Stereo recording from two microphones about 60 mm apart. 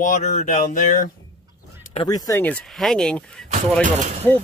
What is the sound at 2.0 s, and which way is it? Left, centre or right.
Speech, left.